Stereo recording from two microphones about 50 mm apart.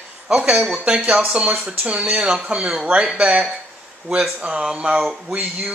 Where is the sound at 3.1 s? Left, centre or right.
Right.